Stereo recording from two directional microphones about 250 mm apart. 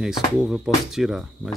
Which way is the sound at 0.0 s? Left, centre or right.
Centre.